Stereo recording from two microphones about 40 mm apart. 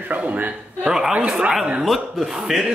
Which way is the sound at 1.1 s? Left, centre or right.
Right.